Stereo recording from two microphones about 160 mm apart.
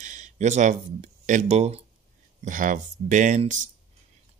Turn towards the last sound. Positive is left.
turn(degrees=-50)  # may be behind; listen again after turning